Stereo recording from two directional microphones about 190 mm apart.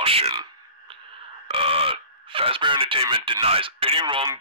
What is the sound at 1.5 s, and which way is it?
Speech, 30° right (ahead or behind).